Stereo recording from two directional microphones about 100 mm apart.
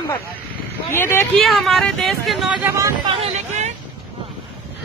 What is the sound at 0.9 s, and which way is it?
Speech, 25° left (ahead or behind).